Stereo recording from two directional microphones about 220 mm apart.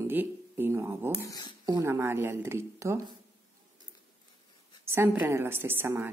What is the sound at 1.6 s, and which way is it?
Speech, 15° right (ahead or behind).